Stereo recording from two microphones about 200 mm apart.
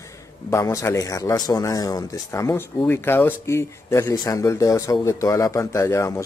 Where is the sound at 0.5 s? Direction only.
15° left (ahead or behind).